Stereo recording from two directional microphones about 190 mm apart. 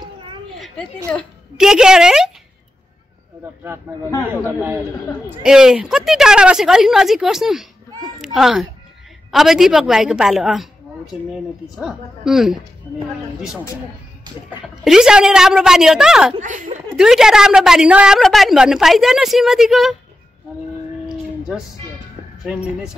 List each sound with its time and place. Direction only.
1.6 s a woman's voice: 5° right (ahead or behind)
3.9 s a man's voice: 10° right (ahead or behind)
11.8 s a woman's voice: centre (ahead or behind)
14.9 s a woman's voice: 5° right (ahead or behind)
16.3 s speech: 40° right (ahead or behind)
16.9 s a woman's voice: centre (ahead or behind)